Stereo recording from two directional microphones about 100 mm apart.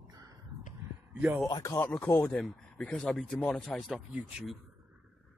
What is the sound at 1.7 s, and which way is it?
Speech, 15° left (ahead or behind).